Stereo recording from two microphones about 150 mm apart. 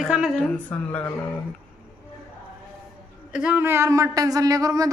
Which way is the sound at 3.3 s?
5° right (ahead or behind).